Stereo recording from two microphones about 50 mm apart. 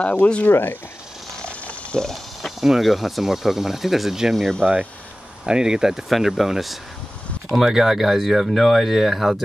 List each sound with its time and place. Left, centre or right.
0.0 s speech: left
0.5 s speech: left
1.4 s pig: left
2.0 s a sound: centre
2.6 s speech: centre
4.6 s speech: centre
6.0 s speech: centre